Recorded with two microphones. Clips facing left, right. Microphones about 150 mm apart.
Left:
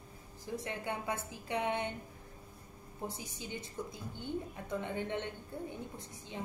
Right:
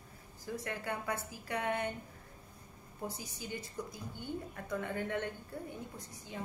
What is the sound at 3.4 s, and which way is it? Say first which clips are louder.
A woman's voice: even; 20° left (ahead or behind).